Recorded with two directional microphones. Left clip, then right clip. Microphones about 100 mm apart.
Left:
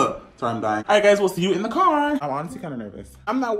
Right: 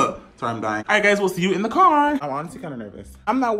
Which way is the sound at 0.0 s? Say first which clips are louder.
Even; 45° left (ahead or behind).